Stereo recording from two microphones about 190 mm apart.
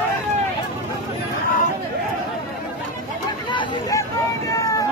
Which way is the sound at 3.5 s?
15° left (ahead or behind).